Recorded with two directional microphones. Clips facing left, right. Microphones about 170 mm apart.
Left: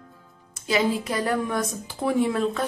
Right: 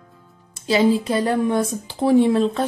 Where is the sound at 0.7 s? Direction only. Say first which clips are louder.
Right 6 dB; 30° right (ahead or behind).